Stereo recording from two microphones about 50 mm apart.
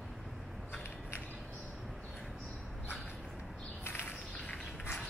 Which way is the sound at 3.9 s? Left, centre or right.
Left.